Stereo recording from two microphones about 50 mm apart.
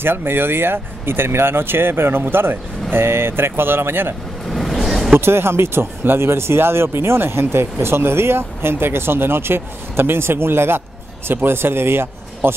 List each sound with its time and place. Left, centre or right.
0.0 s speech: right
4.5 s a sound: centre
5.1 s speech: right